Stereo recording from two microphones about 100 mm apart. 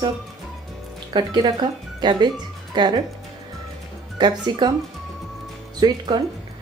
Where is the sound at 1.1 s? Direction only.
45° right (ahead or behind).